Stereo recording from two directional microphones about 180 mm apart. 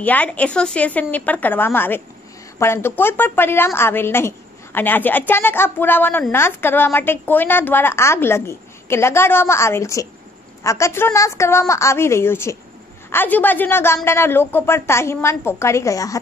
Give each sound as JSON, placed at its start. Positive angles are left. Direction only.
{"t": 0.0, "sound": "a woman's voice", "side_deg": 10}